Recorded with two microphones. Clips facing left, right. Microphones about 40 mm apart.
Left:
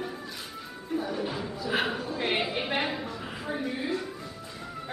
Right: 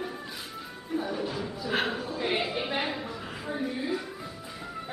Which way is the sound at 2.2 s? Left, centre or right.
Centre.